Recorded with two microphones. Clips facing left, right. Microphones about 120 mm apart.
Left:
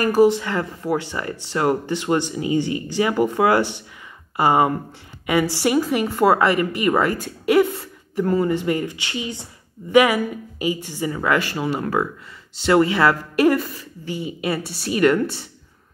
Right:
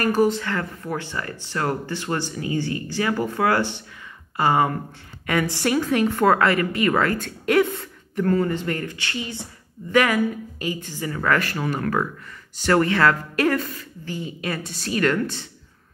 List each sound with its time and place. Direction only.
0.0 s a woman's voice: 10° left (ahead or behind)
12.9 s speech: 10° left (ahead or behind)